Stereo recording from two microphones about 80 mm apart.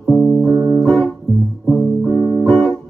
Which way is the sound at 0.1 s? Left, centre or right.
Centre.